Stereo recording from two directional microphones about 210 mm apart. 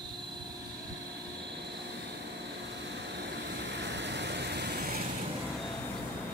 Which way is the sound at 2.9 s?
55° right (ahead or behind).